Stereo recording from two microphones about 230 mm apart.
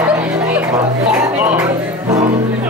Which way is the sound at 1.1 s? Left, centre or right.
Centre.